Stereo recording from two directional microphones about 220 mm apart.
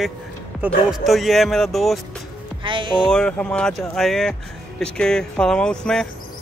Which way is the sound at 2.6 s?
20° right (ahead or behind).